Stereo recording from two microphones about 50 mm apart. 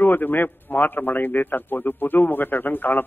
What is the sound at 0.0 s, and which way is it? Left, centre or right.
A man's voice, left.